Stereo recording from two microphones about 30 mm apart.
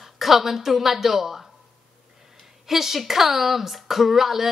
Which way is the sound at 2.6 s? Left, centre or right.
Centre.